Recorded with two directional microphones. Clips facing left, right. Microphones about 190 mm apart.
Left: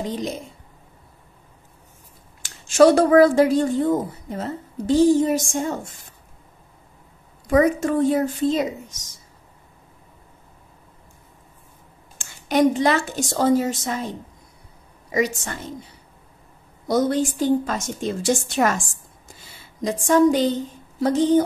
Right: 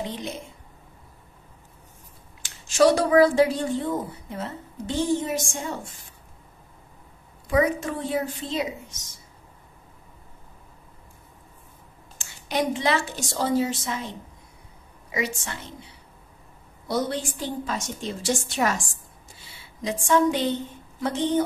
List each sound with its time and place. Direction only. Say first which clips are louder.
0.0 s a woman's voice: left 5 dB; 40° left (ahead or behind)
2.7 s a woman's voice: left 5 dB; 50° left (ahead or behind)
7.4 s a woman's voice: left 5 dB; 45° left (ahead or behind)
12.2 s a woman's voice: left 8 dB; 45° left (ahead or behind)
19.8 s a woman's voice: left 5 dB; 40° left (ahead or behind)